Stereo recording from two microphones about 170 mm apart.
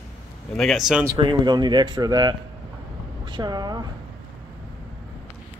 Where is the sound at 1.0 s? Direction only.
25° right (ahead or behind).